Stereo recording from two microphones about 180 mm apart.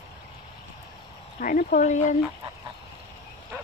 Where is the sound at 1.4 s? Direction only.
50° left (ahead or behind).